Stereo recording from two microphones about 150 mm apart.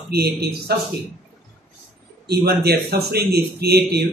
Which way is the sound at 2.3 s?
90° right.